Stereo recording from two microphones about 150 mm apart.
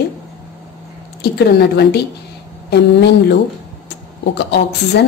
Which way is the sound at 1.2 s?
90° left.